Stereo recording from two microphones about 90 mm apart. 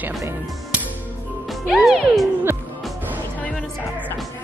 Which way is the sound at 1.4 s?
Centre (ahead or behind).